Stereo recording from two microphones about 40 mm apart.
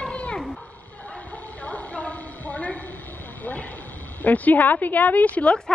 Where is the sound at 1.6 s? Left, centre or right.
Left.